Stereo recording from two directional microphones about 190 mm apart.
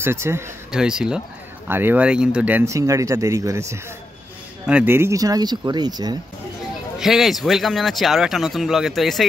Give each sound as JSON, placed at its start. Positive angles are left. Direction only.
{"t": 0.0, "sound": "speech", "side_deg": -15}
{"t": 7.0, "sound": "speech", "side_deg": 0}